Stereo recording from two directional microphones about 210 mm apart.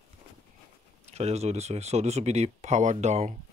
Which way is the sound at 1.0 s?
30° right (ahead or behind).